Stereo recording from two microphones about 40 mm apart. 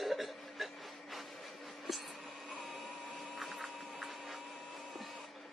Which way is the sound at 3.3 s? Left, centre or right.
Centre.